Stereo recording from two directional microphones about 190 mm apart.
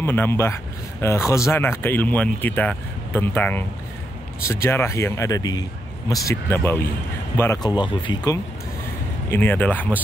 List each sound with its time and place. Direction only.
0.0 s speech: 10° left (ahead or behind)
7.7 s speech: 25° left (ahead or behind)
9.3 s speech: 10° left (ahead or behind)